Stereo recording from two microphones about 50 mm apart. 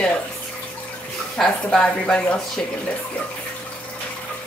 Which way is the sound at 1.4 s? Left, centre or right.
Centre.